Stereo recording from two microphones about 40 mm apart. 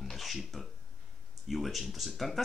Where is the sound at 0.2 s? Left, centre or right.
Centre.